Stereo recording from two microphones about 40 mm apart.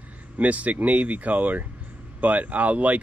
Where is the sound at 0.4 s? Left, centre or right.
Right.